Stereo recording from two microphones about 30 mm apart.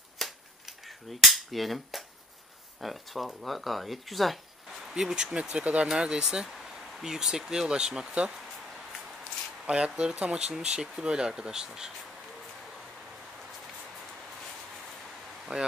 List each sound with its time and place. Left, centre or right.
0.2 s a sound: centre
0.7 s cap gun: centre
2.8 s speech: centre
4.9 s speech: right
5.6 s speech: right
5.9 s speech: right
9.7 s speech: right
15.5 s speech: right